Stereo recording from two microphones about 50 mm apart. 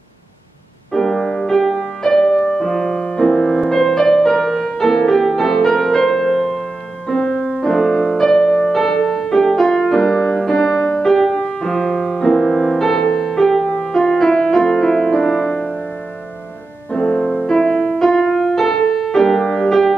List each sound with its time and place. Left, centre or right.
0.9 s music: centre
15.5 s music: left
16.9 s music: left
17.3 s music: centre